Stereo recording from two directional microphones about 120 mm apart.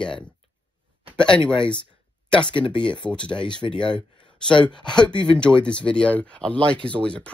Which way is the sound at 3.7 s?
5° left (ahead or behind).